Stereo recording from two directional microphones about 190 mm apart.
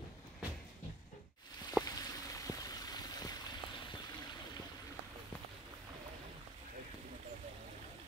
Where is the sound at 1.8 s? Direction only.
20° left (ahead or behind).